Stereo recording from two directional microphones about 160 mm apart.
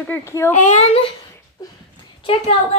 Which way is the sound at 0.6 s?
45° left (ahead or behind).